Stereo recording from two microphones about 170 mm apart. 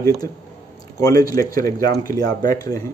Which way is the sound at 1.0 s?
20° left (ahead or behind).